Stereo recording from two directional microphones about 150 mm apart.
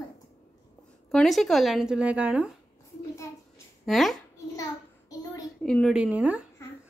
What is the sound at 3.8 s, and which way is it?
Speech, centre (ahead or behind).